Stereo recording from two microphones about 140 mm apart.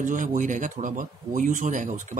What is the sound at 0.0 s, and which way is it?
Speech, 70° right (ahead or behind).